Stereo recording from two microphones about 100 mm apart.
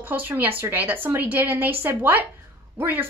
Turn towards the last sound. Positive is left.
turn(degrees=-20)  # may be behind; listen again after turning